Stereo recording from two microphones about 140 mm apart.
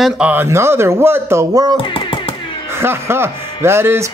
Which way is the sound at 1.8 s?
35° left (ahead or behind).